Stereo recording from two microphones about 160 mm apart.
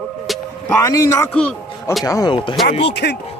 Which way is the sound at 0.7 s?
20° left (ahead or behind).